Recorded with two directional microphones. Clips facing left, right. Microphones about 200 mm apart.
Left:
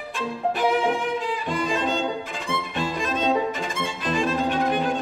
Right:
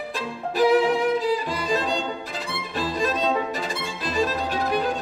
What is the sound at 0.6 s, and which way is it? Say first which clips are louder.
Violin: right 6 dB; 35° right (ahead or behind).